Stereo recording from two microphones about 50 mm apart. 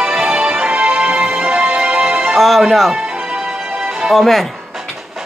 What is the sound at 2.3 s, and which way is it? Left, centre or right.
Speech, centre.